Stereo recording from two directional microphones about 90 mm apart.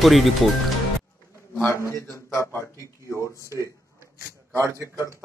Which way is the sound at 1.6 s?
30° left (ahead or behind).